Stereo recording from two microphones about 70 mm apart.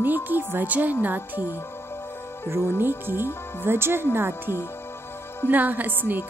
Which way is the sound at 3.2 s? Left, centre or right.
Left.